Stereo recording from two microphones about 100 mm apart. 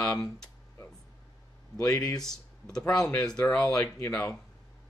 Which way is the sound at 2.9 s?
40° left (ahead or behind).